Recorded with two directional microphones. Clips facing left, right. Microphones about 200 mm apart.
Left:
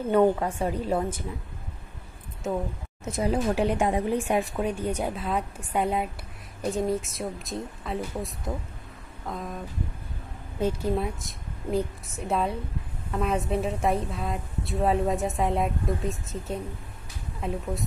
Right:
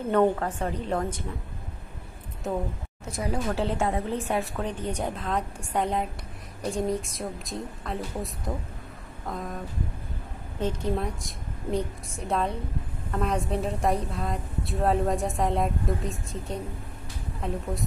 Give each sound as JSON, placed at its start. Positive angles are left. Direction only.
{"t": 0.1, "sound": "a woman's voice", "side_deg": 10}
{"t": 2.4, "sound": "a woman's voice", "side_deg": 0}
{"t": 3.1, "sound": "a woman's voice", "side_deg": 25}
{"t": 10.6, "sound": "a woman's voice", "side_deg": 5}